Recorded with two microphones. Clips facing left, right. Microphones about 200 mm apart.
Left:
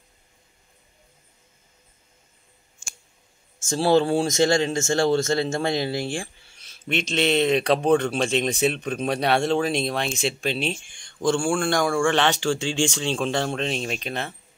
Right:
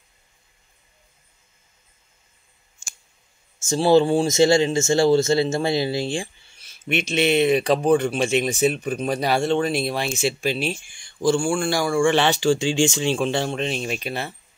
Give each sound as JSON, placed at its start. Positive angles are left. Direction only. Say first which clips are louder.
{"t": 2.8, "sound": "clicking", "louder": "left 1 dB", "side_deg": -40}
{"t": 3.5, "sound": "speech", "louder": "right 3 dB", "side_deg": -5}